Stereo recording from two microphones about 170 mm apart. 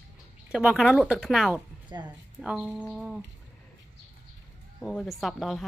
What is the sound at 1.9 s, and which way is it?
Speech, 25° right (ahead or behind).